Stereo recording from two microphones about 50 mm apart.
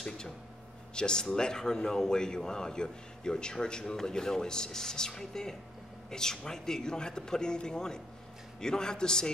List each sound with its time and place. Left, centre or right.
0.9 s a man's voice: centre